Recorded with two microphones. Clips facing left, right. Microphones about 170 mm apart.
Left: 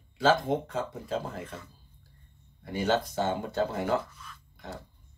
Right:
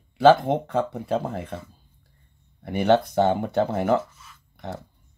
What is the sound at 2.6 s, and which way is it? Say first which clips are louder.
Speech: right 8 dB; 65° right (ahead or behind).